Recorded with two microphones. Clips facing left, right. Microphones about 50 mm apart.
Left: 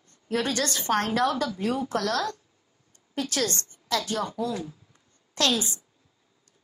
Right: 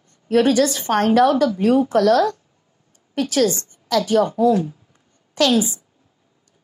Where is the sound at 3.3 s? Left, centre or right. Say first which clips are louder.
Right 12 dB; centre.